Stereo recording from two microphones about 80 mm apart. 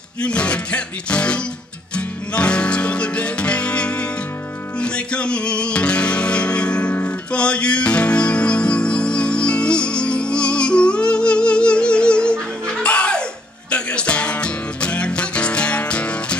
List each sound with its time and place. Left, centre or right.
0.2 s music: centre